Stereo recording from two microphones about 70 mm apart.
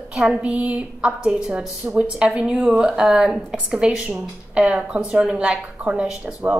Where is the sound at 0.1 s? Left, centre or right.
Centre.